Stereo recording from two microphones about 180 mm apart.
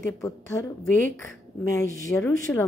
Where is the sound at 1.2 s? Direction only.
15° left (ahead or behind).